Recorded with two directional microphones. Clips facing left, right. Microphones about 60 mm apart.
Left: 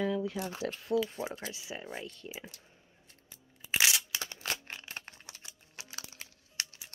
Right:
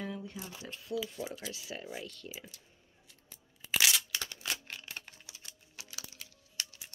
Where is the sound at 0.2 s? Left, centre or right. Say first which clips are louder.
Left 9 dB; left.